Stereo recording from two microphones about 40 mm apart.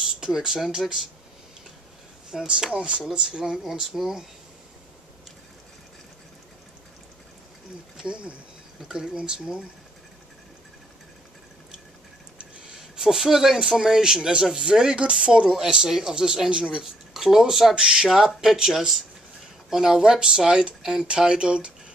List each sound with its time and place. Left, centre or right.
0.0 s speech: centre
2.3 s speech: centre
8.0 s speech: right
12.7 s speech: centre
17.7 s speech: centre
20.8 s speech: centre
21.2 s speech: right